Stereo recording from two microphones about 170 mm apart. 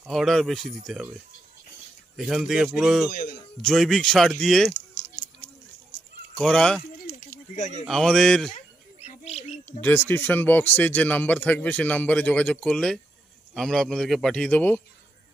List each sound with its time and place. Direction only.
0.0 s a man's voice: centre (ahead or behind)
2.1 s a man's voice: centre (ahead or behind)
3.1 s a man's voice: 60° left (ahead or behind)
3.6 s a man's voice: centre (ahead or behind)
6.3 s speech: 5° left (ahead or behind)
7.1 s a sound: 45° left (ahead or behind)
7.8 s a man's voice: 5° left (ahead or behind)
8.5 s a sound: 40° left (ahead or behind)
9.7 s a man's voice: 10° left (ahead or behind)